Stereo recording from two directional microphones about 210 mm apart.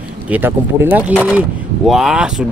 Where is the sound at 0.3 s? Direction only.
10° right (ahead or behind).